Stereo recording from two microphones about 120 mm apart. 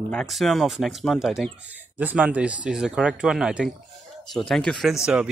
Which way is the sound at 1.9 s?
10° right (ahead or behind).